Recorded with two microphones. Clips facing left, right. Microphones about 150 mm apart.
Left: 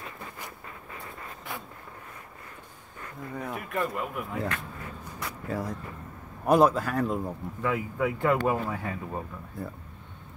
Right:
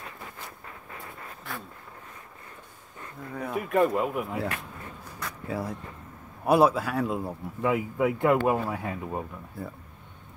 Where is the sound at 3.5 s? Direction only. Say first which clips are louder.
Right 9 dB; 25° right (ahead or behind).